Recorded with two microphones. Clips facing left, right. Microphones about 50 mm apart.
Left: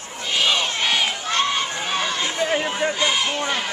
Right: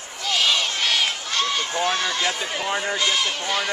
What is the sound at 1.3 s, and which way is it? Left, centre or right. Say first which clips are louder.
Run: left 2 dB; left.